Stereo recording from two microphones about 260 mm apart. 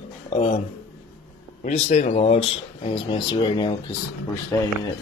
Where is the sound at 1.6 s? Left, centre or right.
Left; by 4.7 s centre.